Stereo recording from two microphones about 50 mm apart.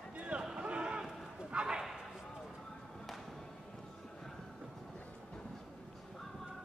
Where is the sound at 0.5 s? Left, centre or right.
Right.